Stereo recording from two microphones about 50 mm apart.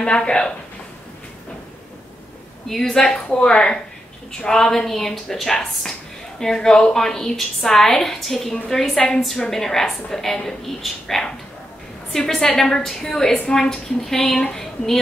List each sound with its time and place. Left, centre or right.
0.0 s speech: centre
2.7 s a woman's voice: centre